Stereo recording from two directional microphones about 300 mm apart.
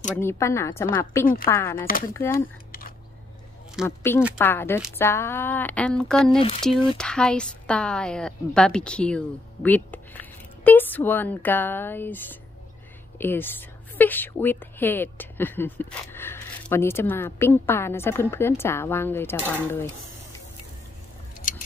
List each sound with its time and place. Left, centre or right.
0.2 s a woman's voice: centre
1.2 s a woman's voice: left
1.5 s a woman's voice: centre
3.8 s a woman's voice: centre
6.3 s a woman's voice: centre
7.0 s a woman's voice: centre
21.4 s a sound: left